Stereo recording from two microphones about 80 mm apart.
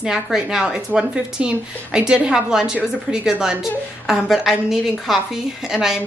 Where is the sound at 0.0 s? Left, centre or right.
Centre.